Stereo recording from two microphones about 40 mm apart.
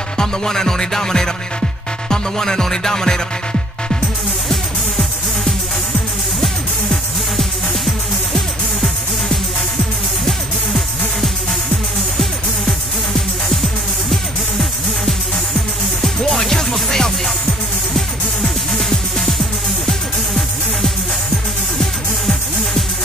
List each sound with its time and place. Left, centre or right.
0.2 s music: centre
6.4 s music: centre
16.0 s music: centre